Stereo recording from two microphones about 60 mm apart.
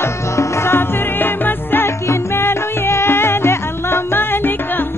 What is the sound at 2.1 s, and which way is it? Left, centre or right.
Music, left.